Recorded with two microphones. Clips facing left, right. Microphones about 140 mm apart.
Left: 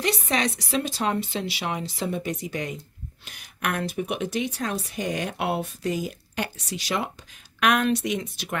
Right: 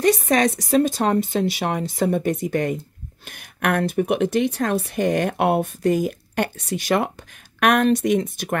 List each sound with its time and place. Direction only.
0.0 s speech: 45° right (ahead or behind)